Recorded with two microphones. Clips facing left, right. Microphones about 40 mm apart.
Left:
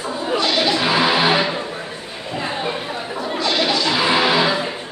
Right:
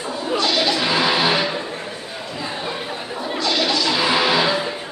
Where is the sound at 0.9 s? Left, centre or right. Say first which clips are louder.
Left 2 dB; centre.